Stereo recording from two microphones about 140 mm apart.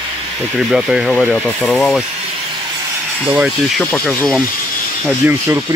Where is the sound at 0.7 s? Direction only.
5° right (ahead or behind).